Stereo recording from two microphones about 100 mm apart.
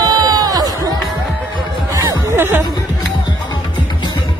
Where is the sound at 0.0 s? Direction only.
40° right (ahead or behind).